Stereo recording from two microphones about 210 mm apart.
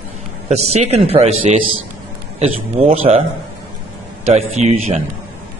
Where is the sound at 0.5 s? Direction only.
30° right (ahead or behind).